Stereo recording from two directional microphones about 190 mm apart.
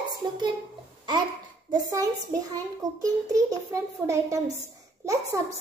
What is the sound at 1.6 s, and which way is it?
A child's voice, 20° right (ahead or behind).